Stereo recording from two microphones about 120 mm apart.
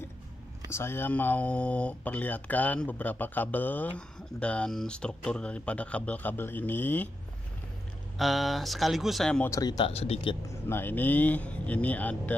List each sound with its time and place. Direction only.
0.7 s speech: 20° left (ahead or behind)
8.2 s speech: centre (ahead or behind)
9.6 s speech: 35° left (ahead or behind)
9.8 s speech: 55° left (ahead or behind)
10.5 s speech: 20° left (ahead or behind)